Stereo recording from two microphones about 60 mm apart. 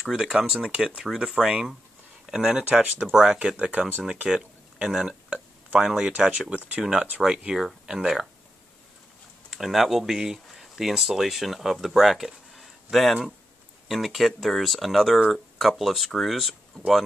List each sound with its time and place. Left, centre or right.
0.0 s speech: centre
3.5 s speech: right
4.3 s a sound: centre
5.0 s speech: centre
6.9 s speech: centre
9.5 s speech: centre